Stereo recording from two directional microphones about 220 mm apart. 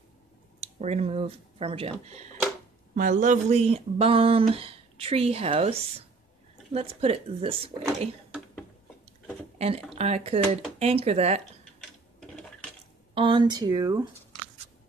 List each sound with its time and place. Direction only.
0.6 s speech: 30° right (ahead or behind)
9.9 s speech: 30° right (ahead or behind)
12.2 s sewing machine: 5° left (ahead or behind)
13.1 s speech: 20° right (ahead or behind)